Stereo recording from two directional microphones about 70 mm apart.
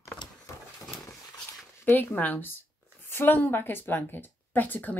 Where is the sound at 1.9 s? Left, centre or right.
Left.